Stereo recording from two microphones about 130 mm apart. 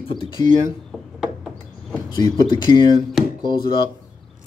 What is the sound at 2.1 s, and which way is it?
Speech, 30° left (ahead or behind).